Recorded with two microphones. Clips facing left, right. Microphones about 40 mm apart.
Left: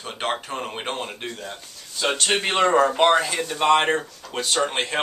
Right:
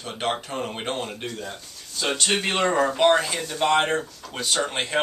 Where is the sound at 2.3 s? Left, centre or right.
Centre.